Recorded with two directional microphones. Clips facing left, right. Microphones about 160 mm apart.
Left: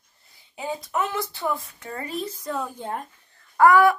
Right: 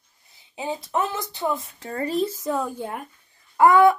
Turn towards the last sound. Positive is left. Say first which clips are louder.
# right 1 dB
turn(degrees=-20)  # may be behind; listen again after turning